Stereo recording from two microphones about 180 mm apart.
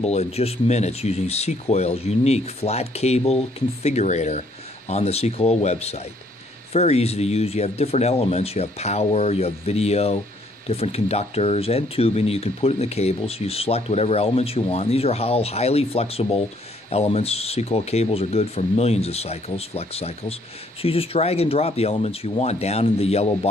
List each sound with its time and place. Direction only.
0.0 s speech: 35° left (ahead or behind)